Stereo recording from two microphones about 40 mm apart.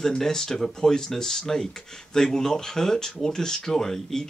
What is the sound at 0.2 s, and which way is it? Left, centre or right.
Speech, centre.